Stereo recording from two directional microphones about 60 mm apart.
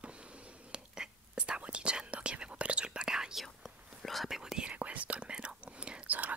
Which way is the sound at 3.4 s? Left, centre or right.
Centre.